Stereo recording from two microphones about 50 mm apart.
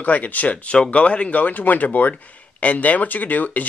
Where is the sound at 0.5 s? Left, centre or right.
Centre.